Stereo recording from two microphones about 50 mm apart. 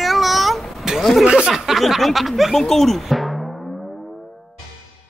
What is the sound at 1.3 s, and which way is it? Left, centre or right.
Speech, right.